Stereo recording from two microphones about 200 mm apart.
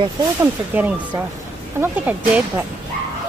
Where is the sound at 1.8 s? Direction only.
10° right (ahead or behind).